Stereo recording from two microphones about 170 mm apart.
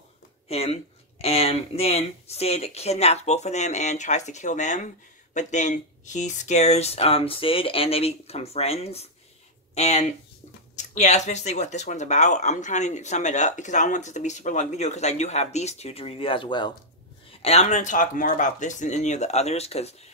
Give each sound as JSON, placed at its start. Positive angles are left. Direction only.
{"t": 0.5, "sound": "speech", "side_deg": 35}